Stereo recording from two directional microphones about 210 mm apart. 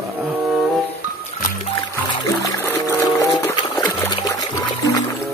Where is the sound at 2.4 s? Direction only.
15° left (ahead or behind).